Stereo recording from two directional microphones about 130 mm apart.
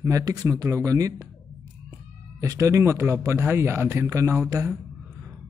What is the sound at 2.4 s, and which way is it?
A man's voice, 25° right (ahead or behind).